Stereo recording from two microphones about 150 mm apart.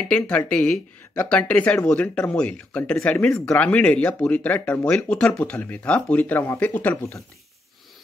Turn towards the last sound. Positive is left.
turn(degrees=10)  # may be behind; listen again after turning